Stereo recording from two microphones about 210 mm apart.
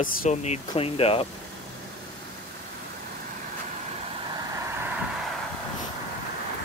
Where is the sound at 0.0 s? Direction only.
35° left (ahead or behind).